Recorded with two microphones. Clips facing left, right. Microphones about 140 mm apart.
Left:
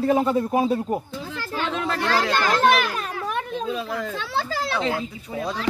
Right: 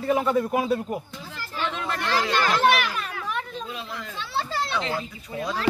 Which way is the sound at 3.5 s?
85° left.